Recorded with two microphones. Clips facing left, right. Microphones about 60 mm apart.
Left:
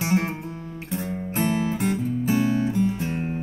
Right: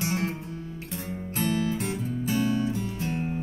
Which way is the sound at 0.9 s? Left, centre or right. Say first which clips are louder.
Left 6 dB; left.